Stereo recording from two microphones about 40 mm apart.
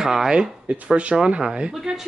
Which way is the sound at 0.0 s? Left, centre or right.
Centre.